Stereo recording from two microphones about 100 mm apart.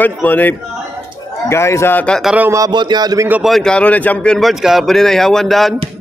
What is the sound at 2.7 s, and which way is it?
Speech, 45° right (ahead or behind).